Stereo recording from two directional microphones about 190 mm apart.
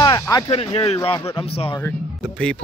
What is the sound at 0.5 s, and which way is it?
Speech, 30° left (ahead or behind).